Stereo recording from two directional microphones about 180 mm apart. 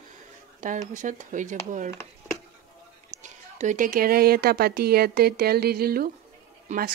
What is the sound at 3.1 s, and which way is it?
Speech, 45° right (ahead or behind).